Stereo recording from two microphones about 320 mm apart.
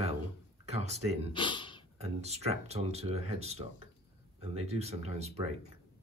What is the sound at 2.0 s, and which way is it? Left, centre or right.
Speech, centre.